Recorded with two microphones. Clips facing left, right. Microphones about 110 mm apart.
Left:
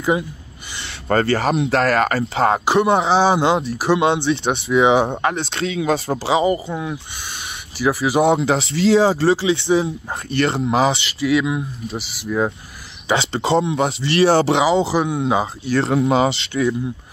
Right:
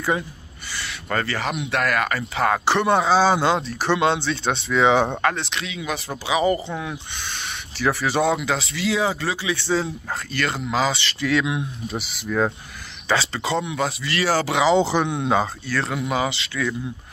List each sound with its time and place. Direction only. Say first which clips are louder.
1.0 s speech: left 8 dB; 35° left (ahead or behind)
2.6 s speech: left 3 dB; 10° left (ahead or behind)
5.3 s speech: left 6 dB; 30° left (ahead or behind)
6.4 s speech: left 2 dB; 10° left (ahead or behind)
8.2 s speech: left 7 dB; 25° left (ahead or behind)
9.6 s speech: left 5 dB; 15° left (ahead or behind)
10.3 s speech: left 7 dB; 25° left (ahead or behind)
11.1 s speech: left 4 dB; 5° left (ahead or behind)
13.1 s speech: left 5 dB; 25° left (ahead or behind)
14.6 s speech: left 1 dB; 5° left (ahead or behind)
15.6 s speech: left 8 dB; 25° left (ahead or behind)